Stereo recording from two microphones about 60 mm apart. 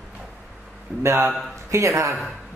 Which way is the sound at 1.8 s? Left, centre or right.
Right.